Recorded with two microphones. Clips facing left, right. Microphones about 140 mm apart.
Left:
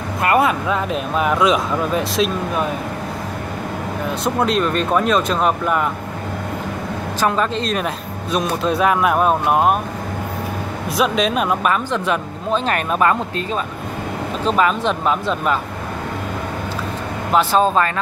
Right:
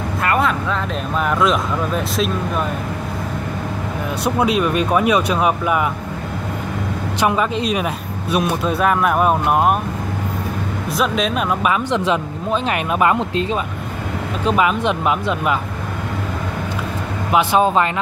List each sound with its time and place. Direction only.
0.4 s a man's voice: 10° left (ahead or behind)
4.4 s speech: 10° right (ahead or behind)
7.2 s a man's voice: 10° right (ahead or behind)
11.0 s a man's voice: centre (ahead or behind)
17.3 s speech: 10° right (ahead or behind)